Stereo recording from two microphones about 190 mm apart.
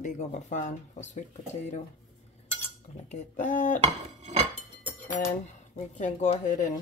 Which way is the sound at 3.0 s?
40° left (ahead or behind).